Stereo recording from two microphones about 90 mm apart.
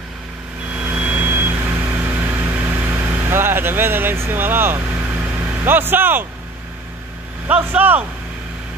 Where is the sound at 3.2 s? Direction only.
25° right (ahead or behind).